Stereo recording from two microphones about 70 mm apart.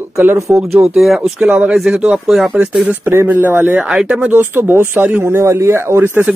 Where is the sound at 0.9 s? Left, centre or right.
Centre.